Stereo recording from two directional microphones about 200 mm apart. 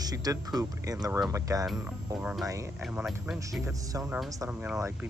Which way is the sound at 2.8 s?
5° right (ahead or behind).